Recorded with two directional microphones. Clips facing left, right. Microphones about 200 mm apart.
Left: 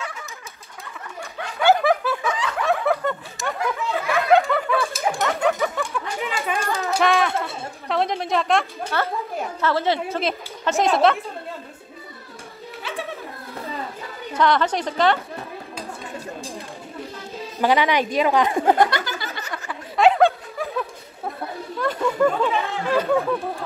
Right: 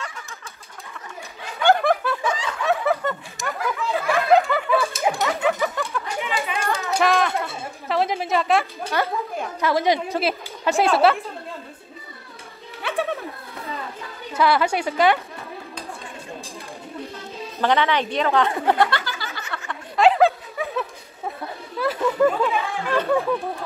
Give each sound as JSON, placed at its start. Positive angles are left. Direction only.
{"t": 1.6, "sound": "snicker", "side_deg": 5}
{"t": 7.0, "sound": "a sound", "side_deg": 0}
{"t": 7.9, "sound": "speech", "side_deg": -5}
{"t": 12.8, "sound": "music", "side_deg": -60}
{"t": 14.3, "sound": "a woman's voice", "side_deg": -10}
{"t": 17.6, "sound": "a woman's voice", "side_deg": 10}
{"t": 19.7, "sound": "a sound", "side_deg": 0}
{"t": 21.7, "sound": "chatter", "side_deg": -5}
{"t": 22.8, "sound": "a sound", "side_deg": 5}